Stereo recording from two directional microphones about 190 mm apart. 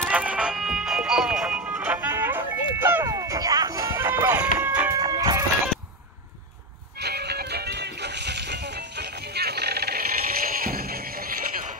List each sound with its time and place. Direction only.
0.0 s music: 5° right (ahead or behind)
7.0 s music: 60° right (ahead or behind)